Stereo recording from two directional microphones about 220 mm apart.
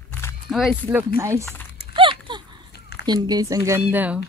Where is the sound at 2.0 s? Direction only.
20° right (ahead or behind).